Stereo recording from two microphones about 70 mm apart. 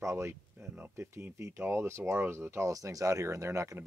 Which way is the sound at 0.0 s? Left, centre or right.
Right.